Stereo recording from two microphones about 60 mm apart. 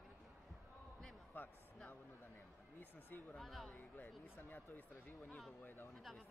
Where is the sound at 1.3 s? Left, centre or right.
Left.